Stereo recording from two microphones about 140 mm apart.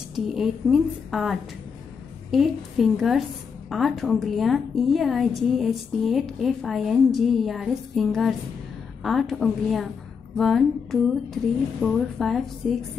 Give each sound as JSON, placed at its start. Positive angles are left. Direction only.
{"t": 0.1, "sound": "a woman's voice", "side_deg": 0}